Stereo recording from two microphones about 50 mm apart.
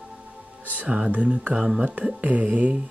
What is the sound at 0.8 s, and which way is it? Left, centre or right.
Speech, right.